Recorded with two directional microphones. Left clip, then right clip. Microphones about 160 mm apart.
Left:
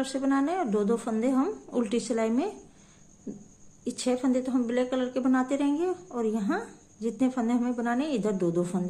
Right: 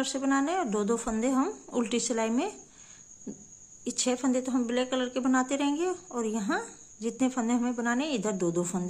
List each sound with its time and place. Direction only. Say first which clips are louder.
0.0 s speech: left 1 dB; 15° right (ahead or behind)
3.3 s cricket: left 2 dB; 20° right (ahead or behind)
3.8 s speech: left 1 dB; 15° right (ahead or behind)